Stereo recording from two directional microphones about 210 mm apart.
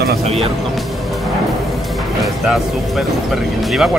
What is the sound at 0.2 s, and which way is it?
Speech, 30° right (ahead or behind).